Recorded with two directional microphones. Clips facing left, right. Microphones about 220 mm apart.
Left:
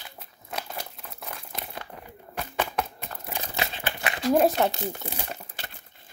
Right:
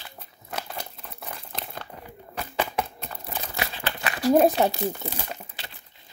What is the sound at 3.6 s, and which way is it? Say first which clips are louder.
Crumpling: even; 20° left (ahead or behind).